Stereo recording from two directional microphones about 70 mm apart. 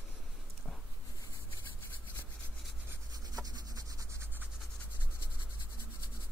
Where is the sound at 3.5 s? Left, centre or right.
Right.